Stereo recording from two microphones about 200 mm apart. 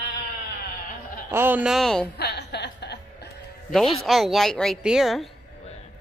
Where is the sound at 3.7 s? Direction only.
Centre (ahead or behind).